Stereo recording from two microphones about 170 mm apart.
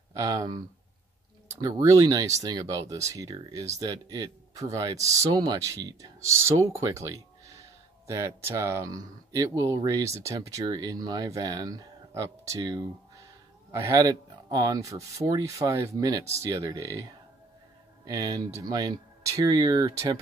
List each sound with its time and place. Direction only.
0.1 s speech: 20° right (ahead or behind)
18.0 s speech: 20° right (ahead or behind)